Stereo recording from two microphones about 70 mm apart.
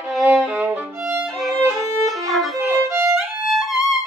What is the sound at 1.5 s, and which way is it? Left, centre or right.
Violin, right.